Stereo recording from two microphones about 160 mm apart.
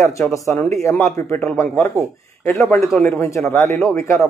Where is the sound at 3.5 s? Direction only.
15° left (ahead or behind).